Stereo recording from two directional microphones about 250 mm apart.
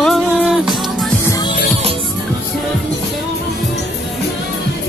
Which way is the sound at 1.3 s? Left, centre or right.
Centre.